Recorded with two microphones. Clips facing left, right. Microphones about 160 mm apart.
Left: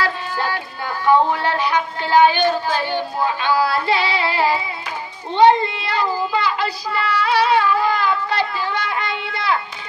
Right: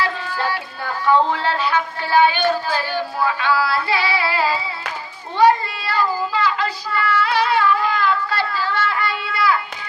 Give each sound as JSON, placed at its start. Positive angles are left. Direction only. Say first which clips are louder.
{"t": 1.0, "sound": "speech", "louder": "left 1 dB", "side_deg": 15}
{"t": 2.7, "sound": "music", "louder": "left 1 dB", "side_deg": 20}
{"t": 6.9, "sound": "child singing", "louder": "even", "side_deg": 20}
{"t": 8.3, "sound": "a sound", "louder": "left 1 dB", "side_deg": 20}